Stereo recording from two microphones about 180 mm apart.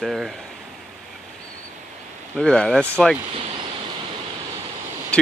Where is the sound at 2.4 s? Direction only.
5° left (ahead or behind).